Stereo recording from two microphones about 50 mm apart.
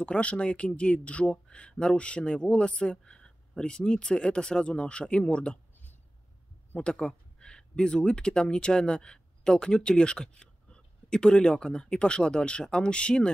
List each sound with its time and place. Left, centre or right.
0.0 s speech: left
6.8 s speech: centre